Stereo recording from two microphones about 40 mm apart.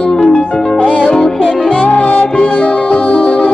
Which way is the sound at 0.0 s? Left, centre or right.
Left.